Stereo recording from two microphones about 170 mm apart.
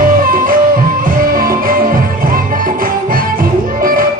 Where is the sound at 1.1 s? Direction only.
55° right (ahead or behind).